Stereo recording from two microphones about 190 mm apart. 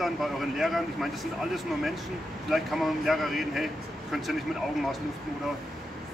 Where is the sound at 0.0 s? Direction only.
Centre (ahead or behind).